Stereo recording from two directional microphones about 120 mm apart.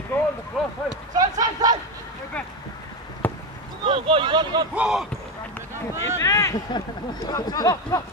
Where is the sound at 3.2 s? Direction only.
15° left (ahead or behind).